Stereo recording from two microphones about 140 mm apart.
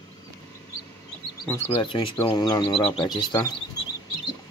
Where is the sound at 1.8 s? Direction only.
40° left (ahead or behind).